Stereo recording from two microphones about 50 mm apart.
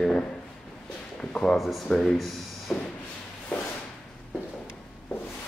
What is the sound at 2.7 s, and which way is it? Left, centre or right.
Speech, centre.